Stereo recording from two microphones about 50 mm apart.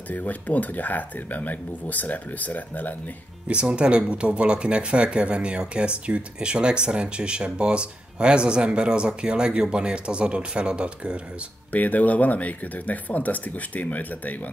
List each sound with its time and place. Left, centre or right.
0.1 s speech: left
3.7 s speech: right
11.7 s speech: left